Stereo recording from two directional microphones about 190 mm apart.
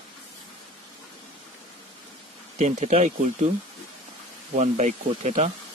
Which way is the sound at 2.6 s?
40° right (ahead or behind).